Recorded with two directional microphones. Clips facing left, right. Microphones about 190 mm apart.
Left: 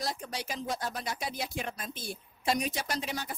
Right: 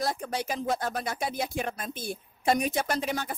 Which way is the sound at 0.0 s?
55° right (ahead or behind).